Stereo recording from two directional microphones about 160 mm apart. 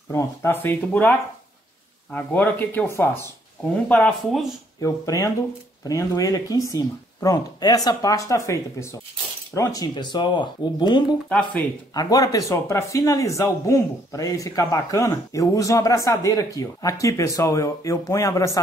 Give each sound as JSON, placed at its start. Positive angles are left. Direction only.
{"t": 0.1, "sound": "speech", "side_deg": 15}
{"t": 4.7, "sound": "speech", "side_deg": 25}